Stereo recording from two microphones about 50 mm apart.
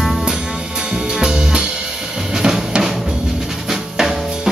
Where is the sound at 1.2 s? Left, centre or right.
Centre.